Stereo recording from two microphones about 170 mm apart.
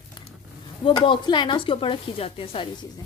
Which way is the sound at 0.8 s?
30° left (ahead or behind).